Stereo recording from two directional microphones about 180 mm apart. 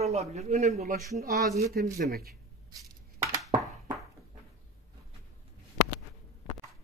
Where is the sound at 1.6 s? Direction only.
60° right (ahead or behind).